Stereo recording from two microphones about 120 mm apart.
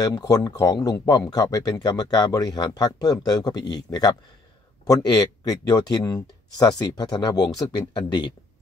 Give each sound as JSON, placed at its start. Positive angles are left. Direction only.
{"t": 0.0, "sound": "speech", "side_deg": 30}